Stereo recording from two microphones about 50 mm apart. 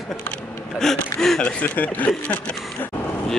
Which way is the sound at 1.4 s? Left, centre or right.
Left.